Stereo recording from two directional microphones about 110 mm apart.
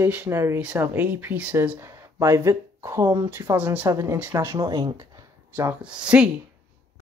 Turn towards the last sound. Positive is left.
turn(degrees=-10)  # may be behind; listen again after turning